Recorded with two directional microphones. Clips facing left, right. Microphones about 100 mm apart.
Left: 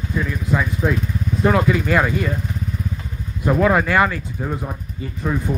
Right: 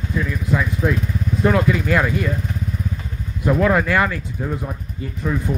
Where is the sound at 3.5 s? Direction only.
5° left (ahead or behind).